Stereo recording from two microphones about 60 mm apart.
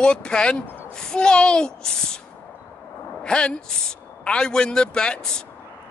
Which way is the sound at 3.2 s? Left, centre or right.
Centre.